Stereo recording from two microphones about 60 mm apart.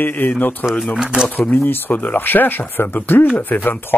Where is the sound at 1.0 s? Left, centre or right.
Centre.